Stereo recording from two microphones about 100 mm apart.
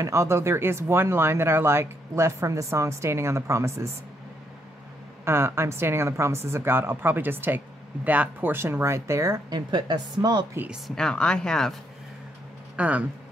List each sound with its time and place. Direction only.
0.0 s a woman's voice: 30° right (ahead or behind)
5.2 s a woman's voice: 25° right (ahead or behind)
9.5 s a woman's voice: 50° right (ahead or behind)
11.0 s speech: 5° left (ahead or behind)
12.7 s speech: 15° right (ahead or behind)